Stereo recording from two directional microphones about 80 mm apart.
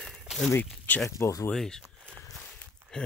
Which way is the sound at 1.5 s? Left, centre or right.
Centre.